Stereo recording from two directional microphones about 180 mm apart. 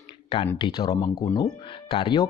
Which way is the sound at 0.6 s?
25° left (ahead or behind).